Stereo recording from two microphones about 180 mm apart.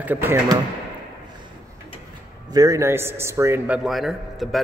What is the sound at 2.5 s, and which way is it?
A man's voice, 20° right (ahead or behind).